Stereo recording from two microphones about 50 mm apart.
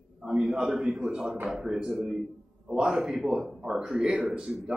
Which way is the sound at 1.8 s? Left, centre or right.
Centre.